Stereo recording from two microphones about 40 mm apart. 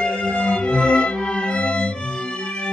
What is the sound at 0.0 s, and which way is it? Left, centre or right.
Music, left.